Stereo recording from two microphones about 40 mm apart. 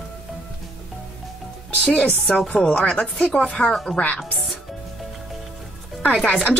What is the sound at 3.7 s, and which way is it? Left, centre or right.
Speech, centre.